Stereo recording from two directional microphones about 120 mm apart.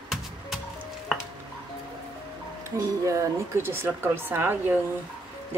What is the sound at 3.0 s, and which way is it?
Speech, 25° right (ahead or behind).